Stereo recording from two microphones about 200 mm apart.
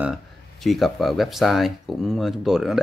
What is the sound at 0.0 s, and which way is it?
Speech, centre (ahead or behind).